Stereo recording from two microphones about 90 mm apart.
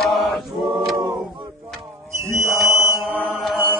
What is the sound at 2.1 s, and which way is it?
Music, 30° right (ahead or behind).